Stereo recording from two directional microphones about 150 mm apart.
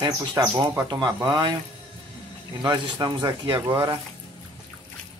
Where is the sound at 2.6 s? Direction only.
30° right (ahead or behind).